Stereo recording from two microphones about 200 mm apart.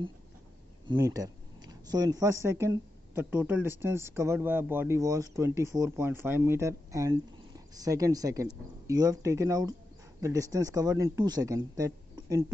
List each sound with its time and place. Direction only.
0.8 s speech: 15° right (ahead or behind)